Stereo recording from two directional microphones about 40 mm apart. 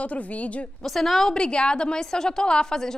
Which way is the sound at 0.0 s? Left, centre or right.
Left.